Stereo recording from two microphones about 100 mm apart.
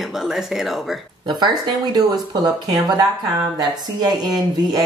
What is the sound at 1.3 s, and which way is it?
Speech, 45° right (ahead or behind).